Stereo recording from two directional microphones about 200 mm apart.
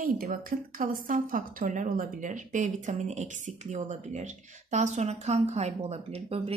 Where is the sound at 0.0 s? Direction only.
45° right (ahead or behind).